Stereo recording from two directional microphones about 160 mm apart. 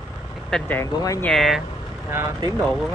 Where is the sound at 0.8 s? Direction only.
20° left (ahead or behind).